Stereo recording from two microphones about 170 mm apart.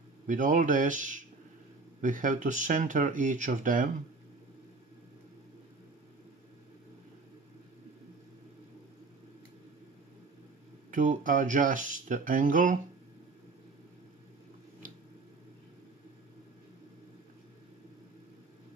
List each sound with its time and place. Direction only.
0.3 s speech: 50° right (ahead or behind)
10.9 s speech: 50° right (ahead or behind)